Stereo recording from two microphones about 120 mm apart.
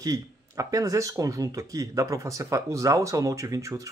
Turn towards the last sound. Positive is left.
turn(degrees=-25)  # may be behind; listen again after turning